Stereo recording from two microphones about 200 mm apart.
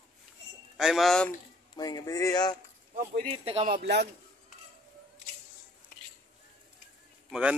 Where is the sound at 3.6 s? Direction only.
50° right (ahead or behind).